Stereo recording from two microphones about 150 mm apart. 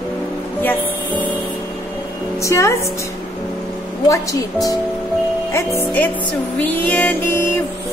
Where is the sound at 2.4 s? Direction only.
20° left (ahead or behind).